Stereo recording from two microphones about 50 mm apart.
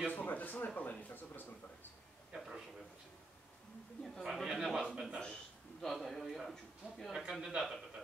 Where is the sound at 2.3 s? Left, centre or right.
Centre.